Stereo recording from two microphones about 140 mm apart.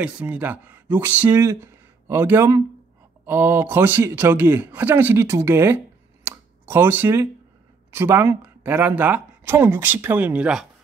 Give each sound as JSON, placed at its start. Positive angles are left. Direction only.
{"t": 0.0, "sound": "speech", "side_deg": -10}
{"t": 6.2, "sound": "a sound", "side_deg": -15}
{"t": 7.9, "sound": "speech", "side_deg": -15}